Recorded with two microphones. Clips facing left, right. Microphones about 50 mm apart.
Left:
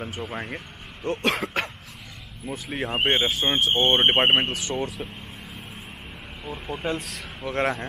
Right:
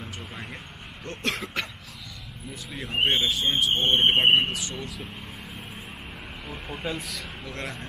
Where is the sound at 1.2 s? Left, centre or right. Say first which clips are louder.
Left 4 dB; left.